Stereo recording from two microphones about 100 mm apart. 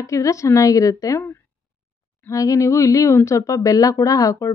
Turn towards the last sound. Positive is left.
turn(degrees=35)  # may be behind; listen again after turning